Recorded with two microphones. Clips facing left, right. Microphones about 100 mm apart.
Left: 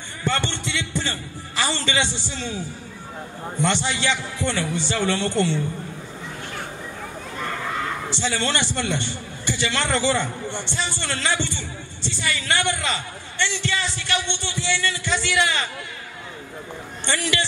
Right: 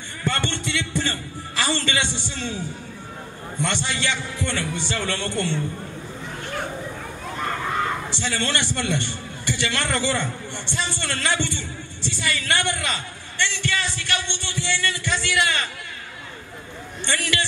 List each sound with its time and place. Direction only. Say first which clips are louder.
0.2 s a man's voice: left 1 dB; 20° left (ahead or behind)
3.6 s a man's voice: left 3 dB; 20° left (ahead or behind)
8.1 s a man's voice: left 2 dB; 20° left (ahead or behind)
17.0 s a man's voice: left 1 dB; 20° left (ahead or behind)